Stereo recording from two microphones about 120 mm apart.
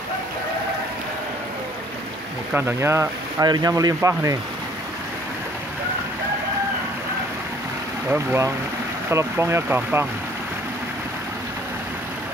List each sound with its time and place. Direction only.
2.5 s speech: 20° right (ahead or behind)
3.4 s speech: 35° right (ahead or behind)
8.1 s speech: 15° right (ahead or behind)